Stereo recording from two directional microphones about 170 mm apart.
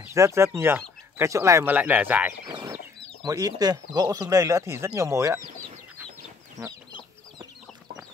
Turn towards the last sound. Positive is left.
turn(degrees=-20)  # may be behind; listen again after turning